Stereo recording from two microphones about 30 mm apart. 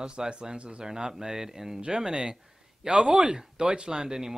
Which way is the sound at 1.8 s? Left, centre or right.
Right.